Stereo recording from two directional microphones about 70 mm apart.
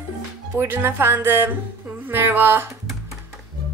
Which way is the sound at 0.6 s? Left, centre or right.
Right.